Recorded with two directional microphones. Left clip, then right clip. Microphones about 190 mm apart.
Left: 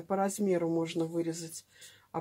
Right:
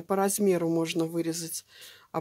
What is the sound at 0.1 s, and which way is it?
Speech, 40° right (ahead or behind).